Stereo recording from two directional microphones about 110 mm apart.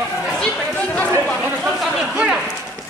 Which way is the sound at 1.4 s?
5° right (ahead or behind).